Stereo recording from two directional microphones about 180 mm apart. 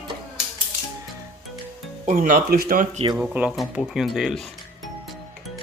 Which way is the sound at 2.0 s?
50° right (ahead or behind).